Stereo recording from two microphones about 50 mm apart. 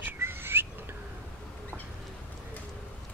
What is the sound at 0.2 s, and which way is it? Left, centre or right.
Bird, right.